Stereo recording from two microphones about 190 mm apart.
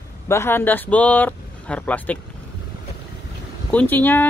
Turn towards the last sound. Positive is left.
turn(degrees=10)  # may be behind; listen again after turning